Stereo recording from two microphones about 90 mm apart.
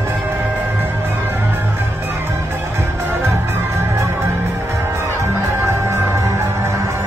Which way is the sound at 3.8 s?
30° right (ahead or behind).